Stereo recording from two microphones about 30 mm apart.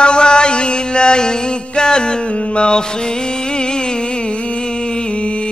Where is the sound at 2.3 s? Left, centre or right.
Left.